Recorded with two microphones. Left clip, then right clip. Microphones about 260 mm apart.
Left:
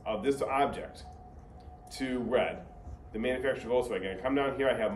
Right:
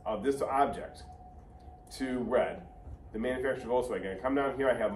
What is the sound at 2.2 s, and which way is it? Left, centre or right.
A man's voice, centre.